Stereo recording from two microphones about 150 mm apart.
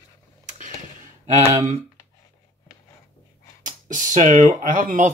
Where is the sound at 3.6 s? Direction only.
60° right (ahead or behind).